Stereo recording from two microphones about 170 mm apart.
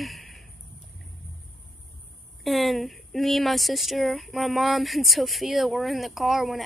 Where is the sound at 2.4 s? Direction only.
Centre (ahead or behind).